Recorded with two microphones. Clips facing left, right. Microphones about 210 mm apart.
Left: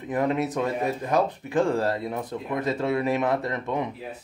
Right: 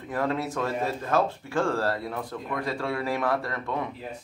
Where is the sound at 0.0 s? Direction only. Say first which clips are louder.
Left 3 dB; 20° left (ahead or behind).